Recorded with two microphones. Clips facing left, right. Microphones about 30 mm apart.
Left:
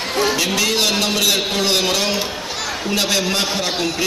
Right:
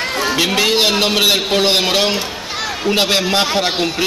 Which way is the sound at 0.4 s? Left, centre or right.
Right.